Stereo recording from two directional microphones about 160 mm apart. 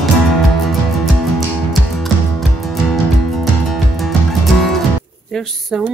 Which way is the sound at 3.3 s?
Centre (ahead or behind).